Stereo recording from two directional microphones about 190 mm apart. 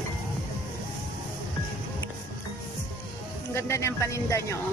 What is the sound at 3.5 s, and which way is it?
Speech, 15° left (ahead or behind).